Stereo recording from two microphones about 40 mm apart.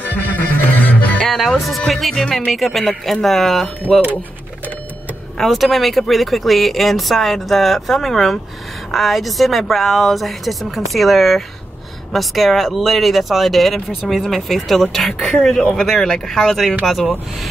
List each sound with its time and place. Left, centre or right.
0.0 s music: left
1.2 s music: centre
1.8 s speech: centre
3.9 s speech: left
5.4 s speech: centre